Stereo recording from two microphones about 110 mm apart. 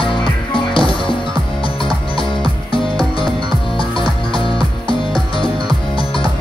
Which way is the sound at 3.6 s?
50° left (ahead or behind).